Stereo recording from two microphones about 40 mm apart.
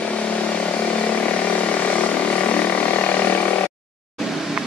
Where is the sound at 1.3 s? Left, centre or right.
Left.